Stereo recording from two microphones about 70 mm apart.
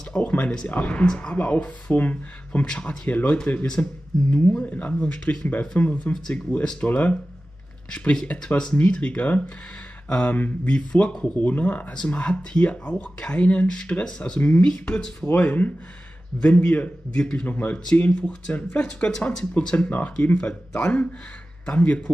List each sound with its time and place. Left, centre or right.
0.1 s a sound: left
0.7 s speech: left
2.6 s speech: centre
3.1 s speech: left
15.2 s speech: left